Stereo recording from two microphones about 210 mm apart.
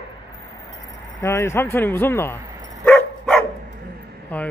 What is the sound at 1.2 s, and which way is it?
A man's voice, 15° left (ahead or behind).